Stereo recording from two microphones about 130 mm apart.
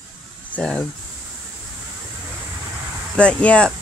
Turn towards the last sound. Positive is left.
turn(degrees=10)  # may be behind; listen again after turning